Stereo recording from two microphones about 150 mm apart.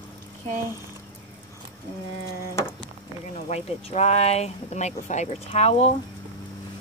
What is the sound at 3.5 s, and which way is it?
Speech, 45° left (ahead or behind).